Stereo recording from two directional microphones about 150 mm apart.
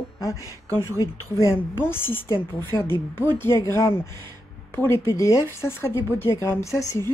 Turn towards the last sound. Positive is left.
turn(degrees=20)  # may be behind; listen again after turning